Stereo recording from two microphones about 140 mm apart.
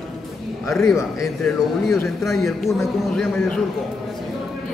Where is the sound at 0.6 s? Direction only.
20° left (ahead or behind).